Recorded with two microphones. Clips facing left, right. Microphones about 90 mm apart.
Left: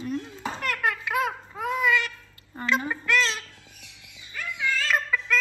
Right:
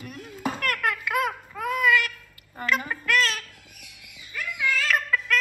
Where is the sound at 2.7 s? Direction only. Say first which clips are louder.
Even; 25° left (ahead or behind).